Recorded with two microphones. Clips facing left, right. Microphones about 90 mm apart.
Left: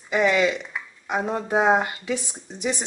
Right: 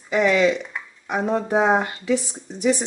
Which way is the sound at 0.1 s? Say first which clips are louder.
Right 2 dB; 15° left (ahead or behind).